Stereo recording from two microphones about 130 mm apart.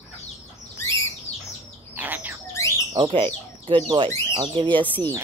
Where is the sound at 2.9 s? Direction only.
40° right (ahead or behind).